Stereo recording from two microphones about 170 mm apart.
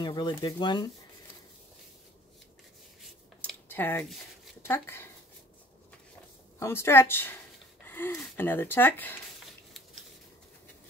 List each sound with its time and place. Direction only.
0.0 s speech: 25° left (ahead or behind)
3.3 s a sound: 10° left (ahead or behind)
4.6 s speech: 15° left (ahead or behind)
6.6 s speech: 15° left (ahead or behind)
7.8 s gasp: 10° left (ahead or behind)
8.2 s speech: 10° left (ahead or behind)